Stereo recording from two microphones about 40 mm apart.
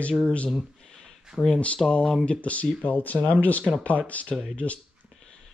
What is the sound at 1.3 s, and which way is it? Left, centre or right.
Speech, centre.